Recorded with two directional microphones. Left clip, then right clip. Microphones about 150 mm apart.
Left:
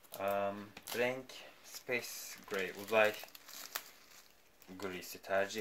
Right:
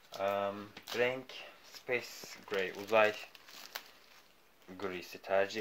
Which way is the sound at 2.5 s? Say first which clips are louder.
Right 3 dB; 40° right (ahead or behind).